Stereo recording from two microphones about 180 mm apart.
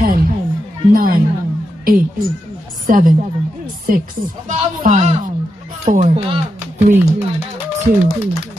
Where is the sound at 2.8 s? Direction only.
50° right (ahead or behind).